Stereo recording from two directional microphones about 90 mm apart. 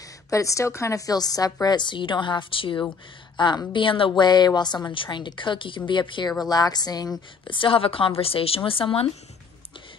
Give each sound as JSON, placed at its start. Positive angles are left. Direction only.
{"t": 0.3, "sound": "a woman's voice", "side_deg": 35}
{"t": 3.3, "sound": "a woman's voice", "side_deg": 55}
{"t": 6.4, "sound": "a woman's voice", "side_deg": 45}
{"t": 7.4, "sound": "a woman's voice", "side_deg": 70}